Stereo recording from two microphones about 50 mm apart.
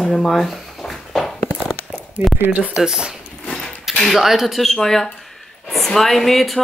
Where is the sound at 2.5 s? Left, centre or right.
Right.